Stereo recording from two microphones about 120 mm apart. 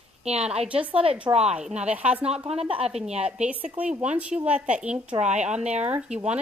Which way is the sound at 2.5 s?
55° right (ahead or behind).